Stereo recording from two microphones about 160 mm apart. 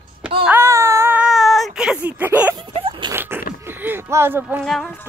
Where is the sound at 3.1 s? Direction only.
15° right (ahead or behind).